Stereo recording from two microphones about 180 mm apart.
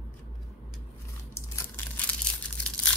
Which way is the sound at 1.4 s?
15° left (ahead or behind).